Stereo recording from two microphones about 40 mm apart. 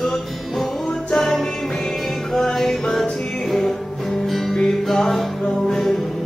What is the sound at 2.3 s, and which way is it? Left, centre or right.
Music, centre.